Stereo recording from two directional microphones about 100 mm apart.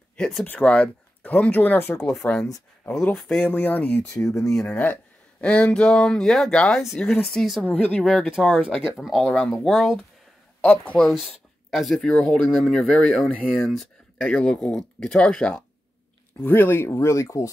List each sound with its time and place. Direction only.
0.1 s speech: 5° left (ahead or behind); by 2.4 s 20° left (ahead or behind)
3.0 s speech: 10° left (ahead or behind)
3.4 s speech: 20° left (ahead or behind)
4.1 s speech: 35° left (ahead or behind)
4.6 s speech: 20° left (ahead or behind); by 7.6 s centre (ahead or behind)
7.6 s speech: 15° left (ahead or behind)
8.0 s speech: centre (ahead or behind)
10.6 s speech: 15° left (ahead or behind)
11.1 s speech: centre (ahead or behind)
12.1 s speech: 15° left (ahead or behind)
12.4 s speech: centre (ahead or behind); by 17.5 s 30° left (ahead or behind)